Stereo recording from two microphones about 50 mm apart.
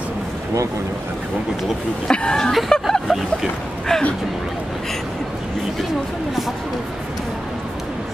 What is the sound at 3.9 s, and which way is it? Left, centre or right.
Speech, centre.